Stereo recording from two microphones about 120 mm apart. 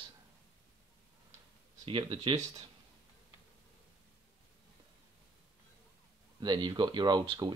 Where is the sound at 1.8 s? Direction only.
45° right (ahead or behind).